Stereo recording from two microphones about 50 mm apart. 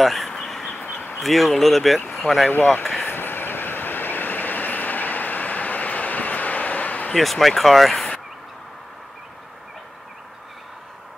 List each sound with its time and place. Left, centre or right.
0.0 s speech: centre
0.3 s a sound: centre
1.1 s speech: centre
2.5 s speech: left
3.1 s train: left
7.2 s speech: centre